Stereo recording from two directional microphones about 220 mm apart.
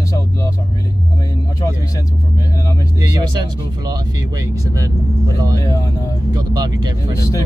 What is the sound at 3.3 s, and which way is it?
Speech, 20° right (ahead or behind).